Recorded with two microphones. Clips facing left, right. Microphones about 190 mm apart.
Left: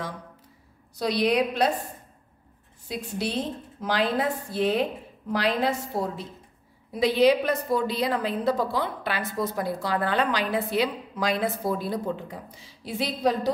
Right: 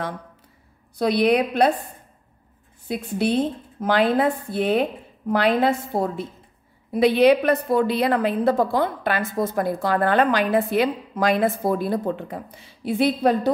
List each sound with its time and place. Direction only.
0.9 s a woman's voice: 55° right (ahead or behind)
2.9 s a woman's voice: 55° right (ahead or behind)